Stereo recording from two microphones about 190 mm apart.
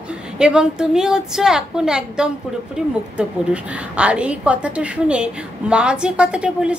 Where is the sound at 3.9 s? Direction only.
5° right (ahead or behind).